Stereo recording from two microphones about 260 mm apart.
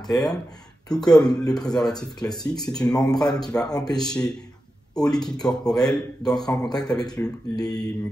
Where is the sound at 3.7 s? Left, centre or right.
Centre.